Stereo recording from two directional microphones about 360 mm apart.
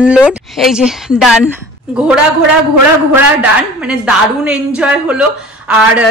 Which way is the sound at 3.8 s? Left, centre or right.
Centre.